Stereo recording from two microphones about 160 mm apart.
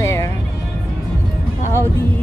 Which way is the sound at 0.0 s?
20° left (ahead or behind).